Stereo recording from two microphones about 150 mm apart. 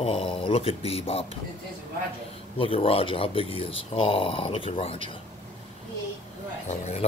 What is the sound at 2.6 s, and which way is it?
Speech, 40° left (ahead or behind).